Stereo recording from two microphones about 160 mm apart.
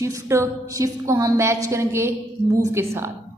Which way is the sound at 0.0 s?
20° right (ahead or behind).